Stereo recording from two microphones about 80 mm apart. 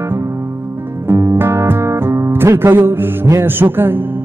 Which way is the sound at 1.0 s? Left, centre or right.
Right.